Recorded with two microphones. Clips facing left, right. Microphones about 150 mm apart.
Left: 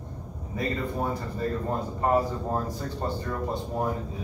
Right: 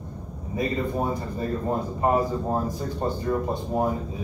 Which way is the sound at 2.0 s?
15° right (ahead or behind).